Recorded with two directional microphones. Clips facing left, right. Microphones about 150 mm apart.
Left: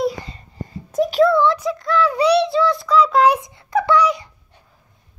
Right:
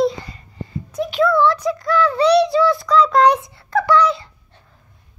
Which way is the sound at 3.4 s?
20° left (ahead or behind).